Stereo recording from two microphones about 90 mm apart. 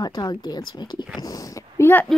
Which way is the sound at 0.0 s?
50° left (ahead or behind).